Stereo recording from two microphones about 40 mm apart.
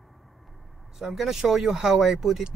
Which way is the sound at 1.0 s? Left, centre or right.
Centre.